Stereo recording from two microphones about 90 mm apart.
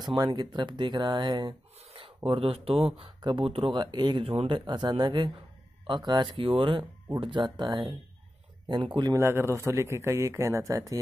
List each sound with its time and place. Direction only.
0.0 s speech: 50° right (ahead or behind)
2.0 s speech: 75° right (ahead or behind)
3.2 s speech: 55° right (ahead or behind)
3.4 s speech: 90° right
3.7 s speech: 55° right (ahead or behind)
4.2 s speech: 90° right; by 9.1 s 60° right (ahead or behind)
9.1 s a man's voice: 25° right (ahead or behind)